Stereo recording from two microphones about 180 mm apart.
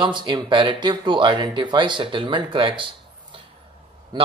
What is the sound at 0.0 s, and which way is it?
Speech, 25° right (ahead or behind).